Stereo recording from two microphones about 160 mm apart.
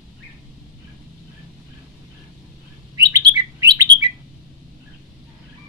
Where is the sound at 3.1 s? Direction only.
25° right (ahead or behind).